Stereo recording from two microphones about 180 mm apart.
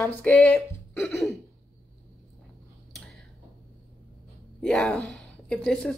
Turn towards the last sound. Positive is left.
turn(degrees=5)  # may be behind; listen again after turning